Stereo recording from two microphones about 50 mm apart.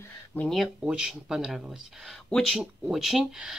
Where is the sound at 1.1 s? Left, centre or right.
Centre.